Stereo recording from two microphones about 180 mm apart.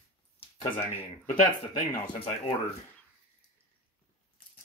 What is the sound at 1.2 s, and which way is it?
Speech, 40° left (ahead or behind).